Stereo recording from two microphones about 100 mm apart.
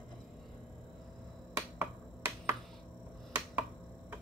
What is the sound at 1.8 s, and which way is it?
Finger snapping, 20° right (ahead or behind).